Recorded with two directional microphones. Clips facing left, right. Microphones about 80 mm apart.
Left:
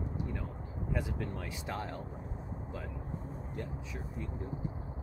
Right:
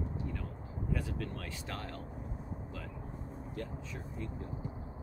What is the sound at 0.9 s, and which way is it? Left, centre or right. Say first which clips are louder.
Speech: left 1 dB; centre.